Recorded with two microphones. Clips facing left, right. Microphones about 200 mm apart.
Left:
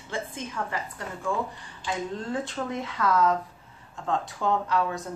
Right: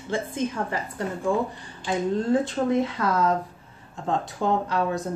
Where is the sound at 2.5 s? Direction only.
30° right (ahead or behind).